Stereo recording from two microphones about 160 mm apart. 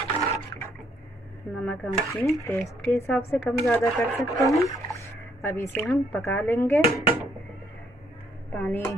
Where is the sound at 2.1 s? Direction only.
Centre (ahead or behind).